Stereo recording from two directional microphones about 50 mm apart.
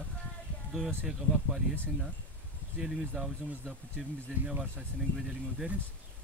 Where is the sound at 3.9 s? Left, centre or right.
Right.